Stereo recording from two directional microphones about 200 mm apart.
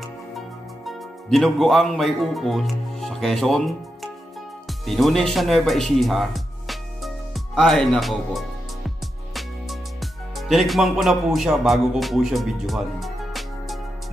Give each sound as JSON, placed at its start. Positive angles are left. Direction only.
{"t": 0.8, "sound": "speech", "side_deg": 0}
{"t": 4.6, "sound": "music", "side_deg": 0}